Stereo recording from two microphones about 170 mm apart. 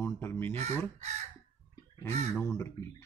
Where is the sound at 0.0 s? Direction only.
15° left (ahead or behind).